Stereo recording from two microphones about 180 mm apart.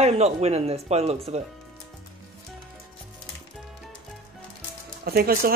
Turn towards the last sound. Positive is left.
turn(degrees=-55)  # may be behind; listen again after turning